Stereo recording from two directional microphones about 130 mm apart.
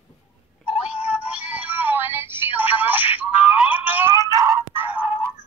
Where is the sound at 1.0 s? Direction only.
10° right (ahead or behind).